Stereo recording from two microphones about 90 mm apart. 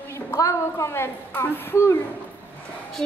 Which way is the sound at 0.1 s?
35° left (ahead or behind).